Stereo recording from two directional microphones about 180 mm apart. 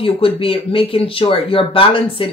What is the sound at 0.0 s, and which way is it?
Speech, 30° left (ahead or behind).